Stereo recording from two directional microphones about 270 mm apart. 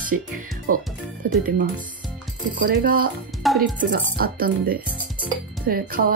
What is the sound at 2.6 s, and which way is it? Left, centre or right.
Speech, right.